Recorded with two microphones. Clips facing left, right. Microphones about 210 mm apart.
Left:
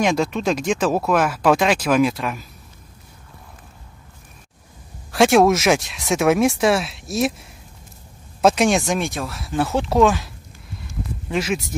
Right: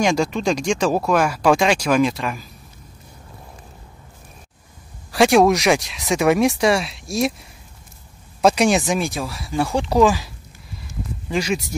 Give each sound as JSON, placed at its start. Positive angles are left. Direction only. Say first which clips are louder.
{"t": 0.0, "sound": "speech", "louder": "right 1 dB", "side_deg": 0}
{"t": 5.1, "sound": "speech", "louder": "even", "side_deg": 0}
{"t": 8.4, "sound": "speech", "louder": "even", "side_deg": 0}